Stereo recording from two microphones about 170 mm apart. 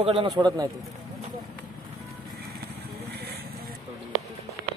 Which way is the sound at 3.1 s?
70° right (ahead or behind).